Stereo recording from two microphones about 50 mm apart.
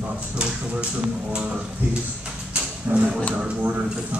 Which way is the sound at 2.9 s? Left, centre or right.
Right.